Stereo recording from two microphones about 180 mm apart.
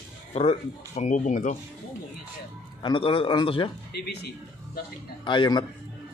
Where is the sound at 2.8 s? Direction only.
25° left (ahead or behind).